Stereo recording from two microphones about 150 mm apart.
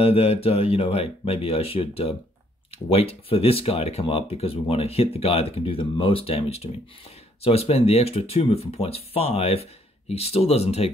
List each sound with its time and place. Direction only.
0.0 s speech: 40° left (ahead or behind)